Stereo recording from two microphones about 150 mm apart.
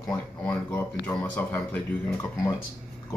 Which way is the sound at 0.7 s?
10° left (ahead or behind).